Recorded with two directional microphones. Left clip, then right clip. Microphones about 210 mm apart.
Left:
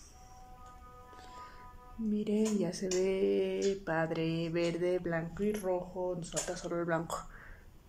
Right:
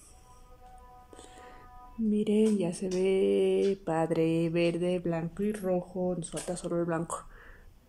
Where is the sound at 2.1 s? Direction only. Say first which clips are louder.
Right 6 dB; 15° right (ahead or behind).